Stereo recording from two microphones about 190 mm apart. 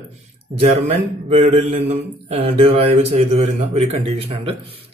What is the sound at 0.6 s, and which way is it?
Mantra, 35° right (ahead or behind).